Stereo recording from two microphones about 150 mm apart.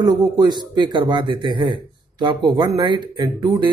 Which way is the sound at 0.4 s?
30° right (ahead or behind).